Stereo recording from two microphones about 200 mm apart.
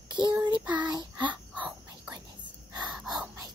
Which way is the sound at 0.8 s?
20° right (ahead or behind).